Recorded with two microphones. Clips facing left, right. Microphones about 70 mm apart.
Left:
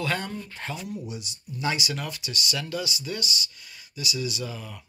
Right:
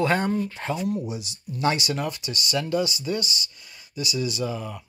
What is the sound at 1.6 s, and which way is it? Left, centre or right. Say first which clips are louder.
Speech: right 4 dB; right.